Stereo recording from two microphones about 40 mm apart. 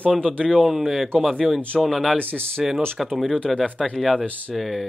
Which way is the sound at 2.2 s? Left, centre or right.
Left.